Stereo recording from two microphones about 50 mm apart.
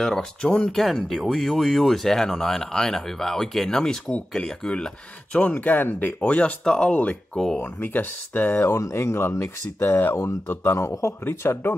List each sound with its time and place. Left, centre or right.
0.0 s speech: centre
0.7 s speech: centre
5.5 s speech: left
6.2 s speech: left
7.3 s speech: centre
7.8 s speech: left
8.6 s speech: left
8.9 s speech: left
9.8 s speech: left
10.8 s speech: left